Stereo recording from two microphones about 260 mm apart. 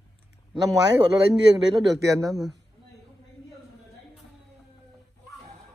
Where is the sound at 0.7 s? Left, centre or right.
Centre.